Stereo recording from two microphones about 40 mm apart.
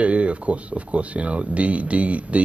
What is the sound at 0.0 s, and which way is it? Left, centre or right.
Speech, right.